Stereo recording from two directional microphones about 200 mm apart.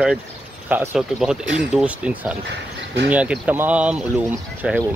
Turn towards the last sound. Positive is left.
turn(degrees=-5)  # may be behind; listen again after turning